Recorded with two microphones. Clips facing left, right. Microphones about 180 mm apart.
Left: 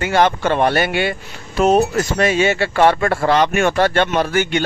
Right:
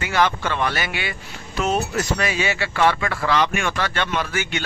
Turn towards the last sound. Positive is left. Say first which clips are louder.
# left 9 dB
turn(degrees=55)  # may be behind; listen again after turning